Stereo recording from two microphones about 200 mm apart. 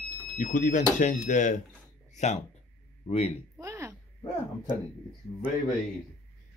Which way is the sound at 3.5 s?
15° right (ahead or behind).